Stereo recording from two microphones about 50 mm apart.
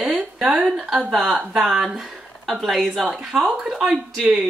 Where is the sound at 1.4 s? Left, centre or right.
Centre.